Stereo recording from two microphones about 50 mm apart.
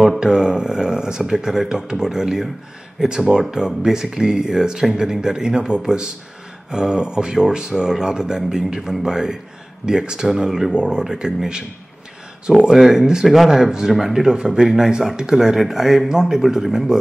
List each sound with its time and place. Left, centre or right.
0.2 s speech: centre